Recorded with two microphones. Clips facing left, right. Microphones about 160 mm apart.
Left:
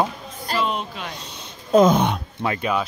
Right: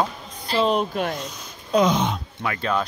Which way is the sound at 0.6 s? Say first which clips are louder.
Right 8 dB; 40° right (ahead or behind).